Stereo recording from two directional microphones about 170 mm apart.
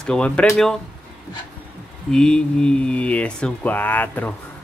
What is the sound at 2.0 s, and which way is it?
Speech, 5° left (ahead or behind).